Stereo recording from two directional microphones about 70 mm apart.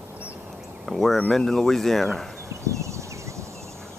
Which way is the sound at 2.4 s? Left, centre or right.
Right.